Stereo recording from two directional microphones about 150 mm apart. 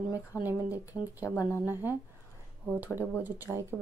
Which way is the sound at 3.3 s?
15° right (ahead or behind).